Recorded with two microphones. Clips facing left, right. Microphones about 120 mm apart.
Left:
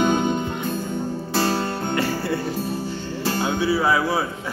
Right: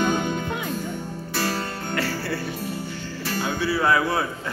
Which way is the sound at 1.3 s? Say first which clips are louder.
Left 4 dB; 30° left (ahead or behind).